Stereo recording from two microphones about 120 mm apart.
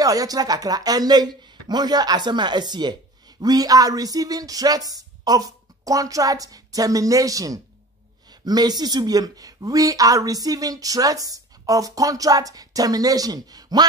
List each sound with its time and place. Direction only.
0.0 s speech: 30° right (ahead or behind)